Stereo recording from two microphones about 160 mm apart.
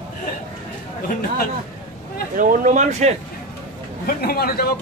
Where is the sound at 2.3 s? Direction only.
60° right (ahead or behind).